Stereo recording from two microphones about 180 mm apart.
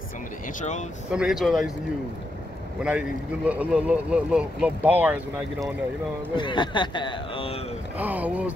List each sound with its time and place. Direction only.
0.6 s speech: 40° left (ahead or behind)
1.1 s speech: centre (ahead or behind)
2.8 s speech: 5° right (ahead or behind)
6.3 s speech: 25° left (ahead or behind)
8.0 s speech: 10° right (ahead or behind)